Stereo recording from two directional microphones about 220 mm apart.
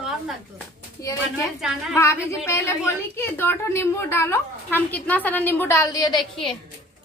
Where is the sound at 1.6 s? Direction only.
5° right (ahead or behind).